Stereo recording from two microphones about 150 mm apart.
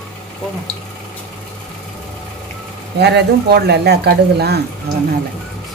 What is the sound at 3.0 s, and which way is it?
Speech, 90° right.